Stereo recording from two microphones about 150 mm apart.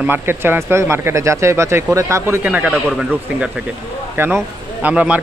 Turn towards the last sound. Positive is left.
turn(degrees=-10)  # may be behind; listen again after turning